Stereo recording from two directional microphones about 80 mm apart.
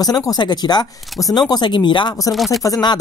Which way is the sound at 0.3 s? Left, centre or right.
Left.